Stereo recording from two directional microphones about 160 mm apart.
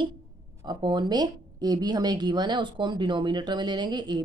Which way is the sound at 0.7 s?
30° right (ahead or behind).